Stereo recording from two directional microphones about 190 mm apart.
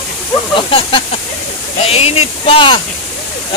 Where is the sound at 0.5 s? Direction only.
25° left (ahead or behind).